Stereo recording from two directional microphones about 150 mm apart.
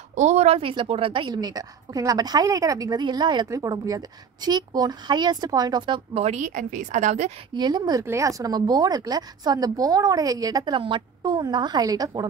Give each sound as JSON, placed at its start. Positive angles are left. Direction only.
{"t": 0.1, "sound": "a woman's voice", "side_deg": -50}
{"t": 6.1, "sound": "a woman's voice", "side_deg": -45}
{"t": 7.5, "sound": "a woman's voice", "side_deg": -30}